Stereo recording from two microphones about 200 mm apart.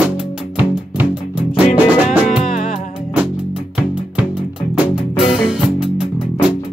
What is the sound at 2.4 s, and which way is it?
Music, 45° left (ahead or behind).